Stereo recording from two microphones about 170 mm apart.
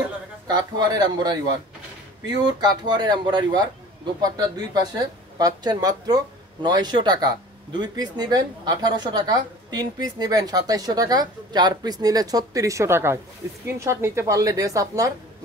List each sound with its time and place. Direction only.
0.5 s speech: 25° right (ahead or behind)